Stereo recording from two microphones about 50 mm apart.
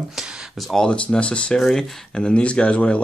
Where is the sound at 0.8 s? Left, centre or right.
Left.